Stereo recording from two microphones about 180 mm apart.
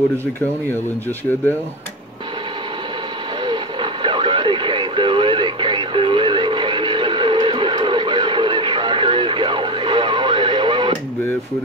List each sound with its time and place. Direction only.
3.4 s radio: 25° right (ahead or behind)